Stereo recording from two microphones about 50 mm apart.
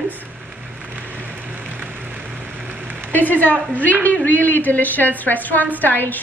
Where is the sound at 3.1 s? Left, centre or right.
Left.